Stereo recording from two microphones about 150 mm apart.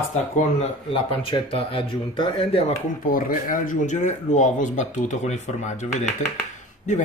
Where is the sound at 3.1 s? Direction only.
65° left (ahead or behind).